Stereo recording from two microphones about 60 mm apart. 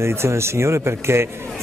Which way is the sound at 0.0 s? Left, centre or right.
Right.